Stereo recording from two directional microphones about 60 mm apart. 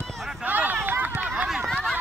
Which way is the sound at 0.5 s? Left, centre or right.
Right.